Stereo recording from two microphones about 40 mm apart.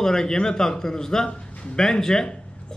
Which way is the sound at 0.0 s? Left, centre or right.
Centre.